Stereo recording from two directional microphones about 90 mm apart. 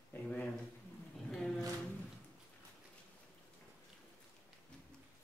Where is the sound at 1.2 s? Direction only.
Centre (ahead or behind).